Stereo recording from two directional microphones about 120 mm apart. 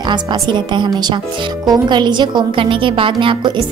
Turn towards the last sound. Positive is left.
turn(degrees=-45)  # may be behind; listen again after turning